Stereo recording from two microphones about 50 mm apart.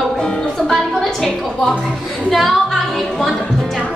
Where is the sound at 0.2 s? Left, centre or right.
Centre.